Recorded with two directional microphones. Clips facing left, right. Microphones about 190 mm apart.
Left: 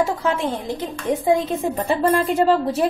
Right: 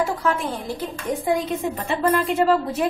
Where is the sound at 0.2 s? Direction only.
20° left (ahead or behind).